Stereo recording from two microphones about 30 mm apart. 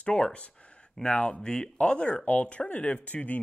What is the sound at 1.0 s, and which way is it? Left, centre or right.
Speech, left.